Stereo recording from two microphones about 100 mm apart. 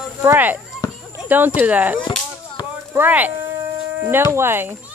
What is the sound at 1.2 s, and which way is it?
Speech, 20° right (ahead or behind).